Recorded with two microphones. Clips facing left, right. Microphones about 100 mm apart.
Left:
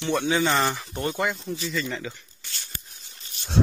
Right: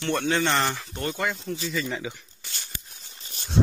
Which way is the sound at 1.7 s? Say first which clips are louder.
Even; 5° right (ahead or behind).